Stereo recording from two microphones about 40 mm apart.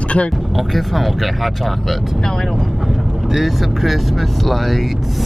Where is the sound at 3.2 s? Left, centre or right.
Centre.